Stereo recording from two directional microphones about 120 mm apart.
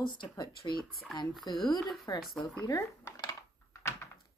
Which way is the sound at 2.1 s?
35° left (ahead or behind).